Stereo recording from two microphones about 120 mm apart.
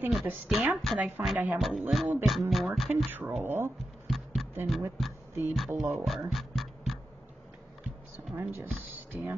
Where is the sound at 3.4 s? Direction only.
20° right (ahead or behind).